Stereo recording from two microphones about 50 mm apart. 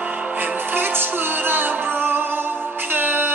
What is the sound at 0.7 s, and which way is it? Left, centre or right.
Music, right.